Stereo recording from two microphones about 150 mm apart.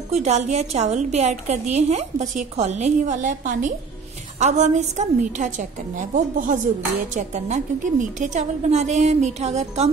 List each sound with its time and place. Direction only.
0.1 s a woman's voice: 50° right (ahead or behind)